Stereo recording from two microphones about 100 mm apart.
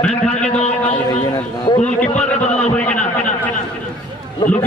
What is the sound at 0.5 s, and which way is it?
Speech, 90° left.